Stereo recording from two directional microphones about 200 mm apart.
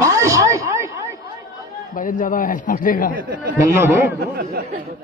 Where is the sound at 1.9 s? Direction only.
40° left (ahead or behind).